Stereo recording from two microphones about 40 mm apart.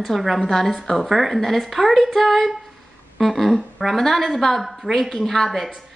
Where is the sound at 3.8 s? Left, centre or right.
Centre.